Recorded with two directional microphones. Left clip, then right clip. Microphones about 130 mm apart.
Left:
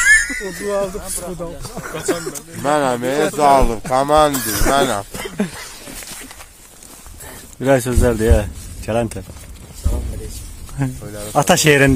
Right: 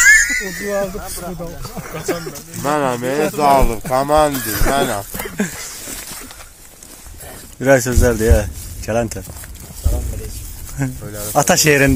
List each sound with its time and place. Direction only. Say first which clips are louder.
0.0 s a sound: right 3 dB; 10° left (ahead or behind)
1.8 s speech: left 2 dB; 15° left (ahead or behind)
2.0 s speech: left 1 dB; centre (ahead or behind)
2.7 s speech: left 1 dB; 15° left (ahead or behind); by 4.3 s centre (ahead or behind)
4.3 s speech: left 1 dB; 20° left (ahead or behind)
4.6 s speech: left 2 dB; 5° left (ahead or behind)
5.2 s a sound: right 1 dB; 15° left (ahead or behind)
7.6 s speech: right 2 dB; 20° left (ahead or behind)
11.3 s speech: even; 25° left (ahead or behind)